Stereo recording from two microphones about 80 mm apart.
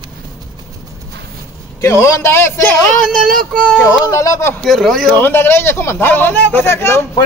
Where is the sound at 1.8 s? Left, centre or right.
Left.